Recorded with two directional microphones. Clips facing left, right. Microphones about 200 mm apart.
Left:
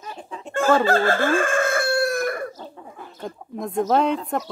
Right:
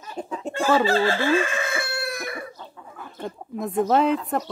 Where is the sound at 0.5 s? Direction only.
50° left (ahead or behind).